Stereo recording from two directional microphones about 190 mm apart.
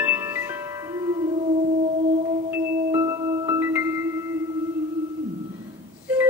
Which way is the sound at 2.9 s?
15° right (ahead or behind).